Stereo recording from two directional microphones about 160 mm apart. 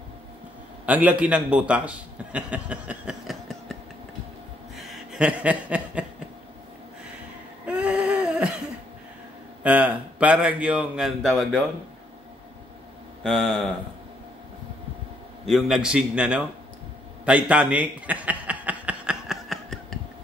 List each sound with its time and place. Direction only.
0.8 s a man's voice: 10° right (ahead or behind)
4.7 s chuckle: centre (ahead or behind)
7.6 s a sound: 10° right (ahead or behind)
9.6 s a man's voice: 10° right (ahead or behind)
13.2 s a man's voice: 5° left (ahead or behind)
15.4 s a man's voice: centre (ahead or behind)
17.2 s chuckle: 5° right (ahead or behind)